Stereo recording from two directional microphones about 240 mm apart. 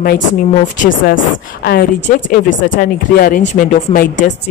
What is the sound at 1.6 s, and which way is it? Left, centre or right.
A woman's voice, left.